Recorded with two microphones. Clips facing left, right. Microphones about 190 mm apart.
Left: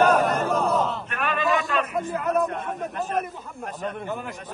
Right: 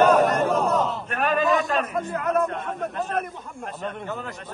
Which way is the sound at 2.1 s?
5° left (ahead or behind).